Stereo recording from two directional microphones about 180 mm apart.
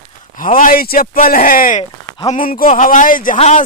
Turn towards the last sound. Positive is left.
turn(degrees=40)  # may be behind; listen again after turning